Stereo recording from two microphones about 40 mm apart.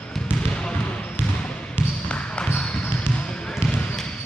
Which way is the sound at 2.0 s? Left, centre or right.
Left.